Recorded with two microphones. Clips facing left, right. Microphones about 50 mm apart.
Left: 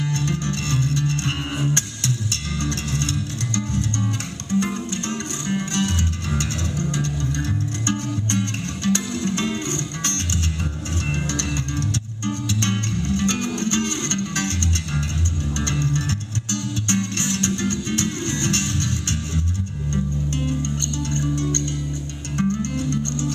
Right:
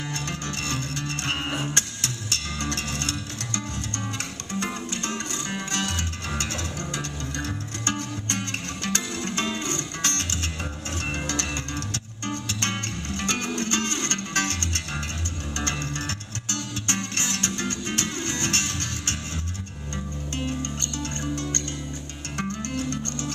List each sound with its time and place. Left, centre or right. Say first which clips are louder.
0.2 s music: left 6 dB; right
4.5 s music: left 7 dB; right
11.2 s music: left 3 dB; right
22.4 s music: left 7 dB; right